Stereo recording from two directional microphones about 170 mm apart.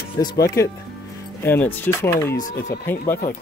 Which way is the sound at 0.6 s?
15° left (ahead or behind).